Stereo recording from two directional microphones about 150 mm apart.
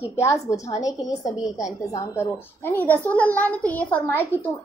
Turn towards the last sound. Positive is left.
turn(degrees=15)  # may be behind; listen again after turning